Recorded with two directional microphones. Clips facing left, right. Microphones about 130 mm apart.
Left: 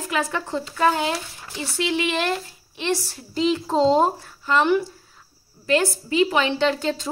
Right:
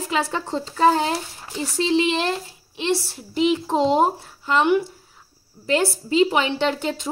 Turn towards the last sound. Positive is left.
turn(degrees=-20)  # may be behind; listen again after turning